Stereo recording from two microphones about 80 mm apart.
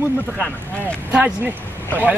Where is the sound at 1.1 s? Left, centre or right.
Centre.